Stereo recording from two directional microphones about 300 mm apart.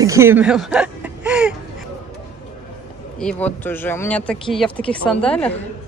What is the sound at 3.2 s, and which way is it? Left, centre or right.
Speech, centre.